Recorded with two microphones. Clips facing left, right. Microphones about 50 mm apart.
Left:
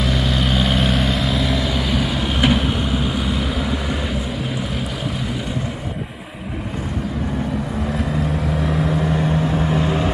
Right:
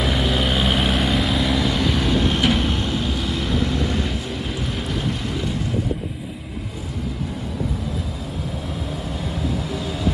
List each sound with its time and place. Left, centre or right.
0.0 s vehicle: centre
8.6 s vehicle: left